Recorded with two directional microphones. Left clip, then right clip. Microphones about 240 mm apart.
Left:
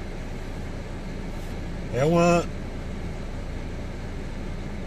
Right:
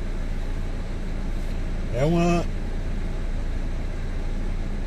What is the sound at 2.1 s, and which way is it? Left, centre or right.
Speech, centre.